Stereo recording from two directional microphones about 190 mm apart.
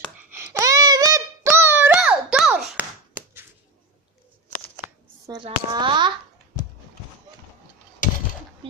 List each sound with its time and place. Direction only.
0.3 s a sound: 15° right (ahead or behind)
4.8 s shuffling cards: 15° right (ahead or behind)
5.4 s a child's voice: 25° right (ahead or behind)